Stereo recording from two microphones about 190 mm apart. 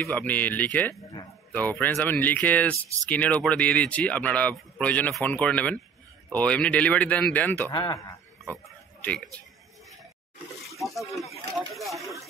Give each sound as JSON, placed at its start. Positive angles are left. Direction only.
{"t": 0.0, "sound": "speech", "side_deg": 10}
{"t": 7.7, "sound": "a man's voice", "side_deg": 20}
{"t": 8.5, "sound": "oink", "side_deg": 5}
{"t": 10.8, "sound": "a sound", "side_deg": 0}